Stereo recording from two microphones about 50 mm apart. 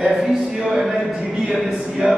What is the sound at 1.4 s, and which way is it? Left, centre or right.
Speech, centre.